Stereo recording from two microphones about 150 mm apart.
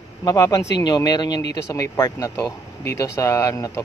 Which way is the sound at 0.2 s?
25° left (ahead or behind).